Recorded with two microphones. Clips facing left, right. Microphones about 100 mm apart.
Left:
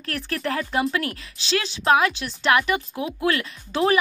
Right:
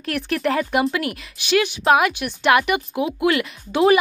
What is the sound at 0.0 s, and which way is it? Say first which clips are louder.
Speech: right 5 dB; 20° right (ahead or behind).